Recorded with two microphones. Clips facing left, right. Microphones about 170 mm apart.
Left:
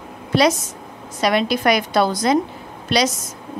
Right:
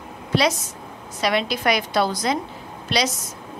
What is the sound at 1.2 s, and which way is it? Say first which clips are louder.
A woman's voice: left 4 dB; 50° left (ahead or behind).